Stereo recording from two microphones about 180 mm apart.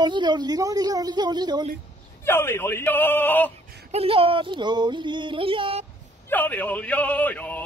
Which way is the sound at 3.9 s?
30° right (ahead or behind).